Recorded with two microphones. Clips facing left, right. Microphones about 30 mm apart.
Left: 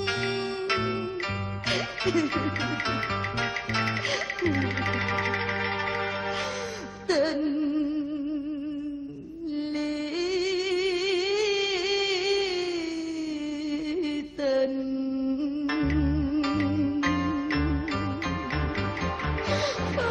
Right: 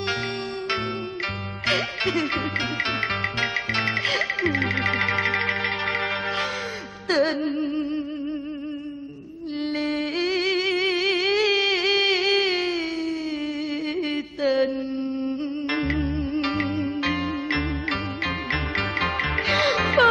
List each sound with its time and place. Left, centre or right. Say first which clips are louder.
0.0 s music: right 1 dB; centre
1.7 s music: right 4 dB; right
9.8 s music: right 6 dB; right
13.9 s a sound: right 2 dB; right
15.2 s music: right 1 dB; right
18.5 s music: right 5 dB; right